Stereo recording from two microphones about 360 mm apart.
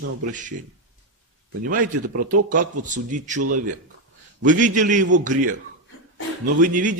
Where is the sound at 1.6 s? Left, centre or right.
Right.